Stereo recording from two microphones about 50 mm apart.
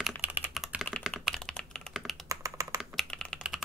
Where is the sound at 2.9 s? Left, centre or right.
Centre.